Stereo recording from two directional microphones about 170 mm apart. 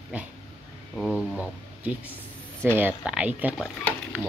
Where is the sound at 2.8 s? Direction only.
10° right (ahead or behind).